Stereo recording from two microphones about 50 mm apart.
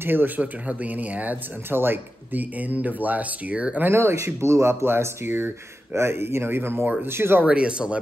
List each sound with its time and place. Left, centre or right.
0.0 s speech: right
0.4 s speech: right
1.7 s speech: right
2.6 s speech: right
3.9 s speech: right
4.8 s speech: right
7.4 s speech: right